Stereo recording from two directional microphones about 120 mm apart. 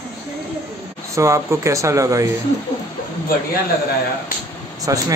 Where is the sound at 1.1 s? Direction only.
25° right (ahead or behind).